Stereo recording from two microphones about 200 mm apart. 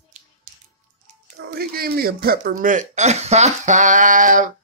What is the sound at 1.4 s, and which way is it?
Speech, 50° right (ahead or behind).